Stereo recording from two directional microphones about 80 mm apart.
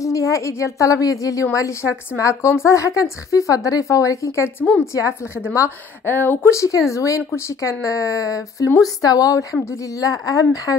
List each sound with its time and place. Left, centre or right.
0.0 s a woman's voice: left
6.0 s speech: left
6.5 s a woman's voice: left